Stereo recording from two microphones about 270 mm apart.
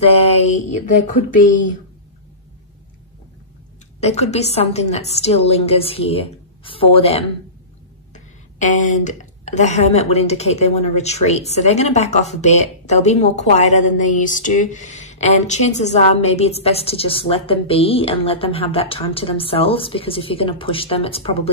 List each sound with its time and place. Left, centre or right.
0.0 s a woman's voice: left
4.0 s a woman's voice: left